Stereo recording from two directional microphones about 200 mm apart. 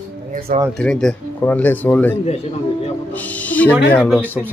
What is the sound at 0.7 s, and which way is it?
Speech, 5° left (ahead or behind).